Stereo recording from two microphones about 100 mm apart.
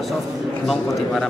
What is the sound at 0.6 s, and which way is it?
Speech, 5° left (ahead or behind).